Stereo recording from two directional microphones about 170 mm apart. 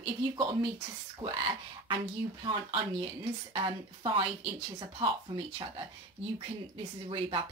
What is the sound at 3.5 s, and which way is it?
A woman's voice, 30° right (ahead or behind).